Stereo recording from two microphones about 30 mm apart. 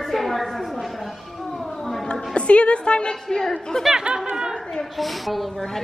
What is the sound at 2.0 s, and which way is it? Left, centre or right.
A woman's voice, left.